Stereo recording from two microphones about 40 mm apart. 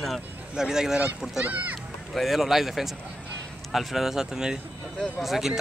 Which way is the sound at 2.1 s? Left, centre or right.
Centre.